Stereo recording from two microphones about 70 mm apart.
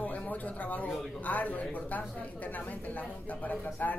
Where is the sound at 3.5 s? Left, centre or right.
Left.